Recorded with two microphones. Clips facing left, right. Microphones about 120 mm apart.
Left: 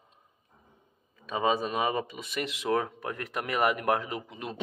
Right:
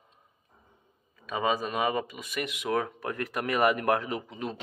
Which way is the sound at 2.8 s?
15° left (ahead or behind).